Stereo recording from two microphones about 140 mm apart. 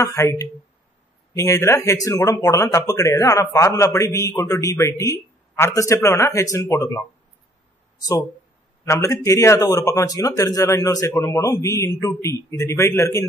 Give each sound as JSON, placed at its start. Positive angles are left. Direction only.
{"t": 0.0, "sound": "a man's voice", "side_deg": 20}
{"t": 8.8, "sound": "a man's voice", "side_deg": 20}